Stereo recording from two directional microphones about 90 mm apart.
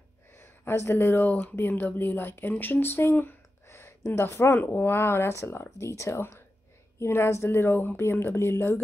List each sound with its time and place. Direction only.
0.4 s speech: 25° left (ahead or behind)